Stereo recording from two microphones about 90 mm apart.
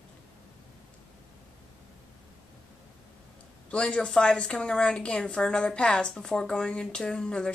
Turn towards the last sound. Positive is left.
turn(degrees=10)  # may be behind; listen again after turning